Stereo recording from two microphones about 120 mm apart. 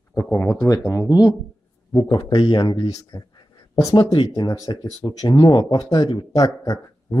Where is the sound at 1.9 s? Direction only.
35° left (ahead or behind).